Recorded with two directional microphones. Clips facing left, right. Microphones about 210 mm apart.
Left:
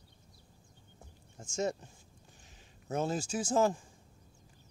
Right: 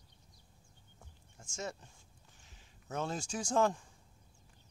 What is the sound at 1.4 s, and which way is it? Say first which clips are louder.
Speech: left 9 dB; 20° left (ahead or behind).